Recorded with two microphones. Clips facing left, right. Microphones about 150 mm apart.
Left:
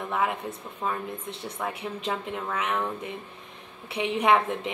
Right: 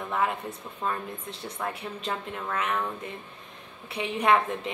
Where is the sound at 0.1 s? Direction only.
10° left (ahead or behind).